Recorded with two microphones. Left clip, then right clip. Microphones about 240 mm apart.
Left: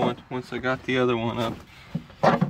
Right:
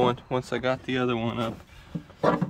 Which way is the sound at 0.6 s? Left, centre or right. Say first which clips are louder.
Left 7 dB; centre.